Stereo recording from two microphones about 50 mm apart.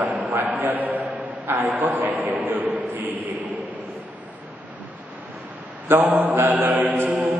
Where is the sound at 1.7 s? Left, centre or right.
Right.